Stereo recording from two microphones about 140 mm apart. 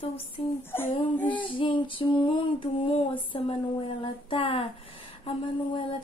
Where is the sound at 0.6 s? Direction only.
15° left (ahead or behind).